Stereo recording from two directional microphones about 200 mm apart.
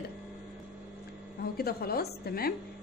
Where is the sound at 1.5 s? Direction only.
50° left (ahead or behind).